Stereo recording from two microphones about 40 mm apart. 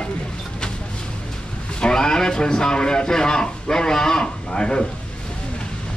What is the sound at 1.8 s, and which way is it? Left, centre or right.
A man's voice, centre.